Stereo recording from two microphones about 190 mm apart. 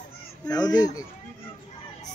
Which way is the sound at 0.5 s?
20° left (ahead or behind).